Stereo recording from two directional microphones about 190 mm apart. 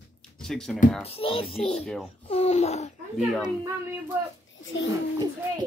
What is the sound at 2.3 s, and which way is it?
Speech, 35° left (ahead or behind).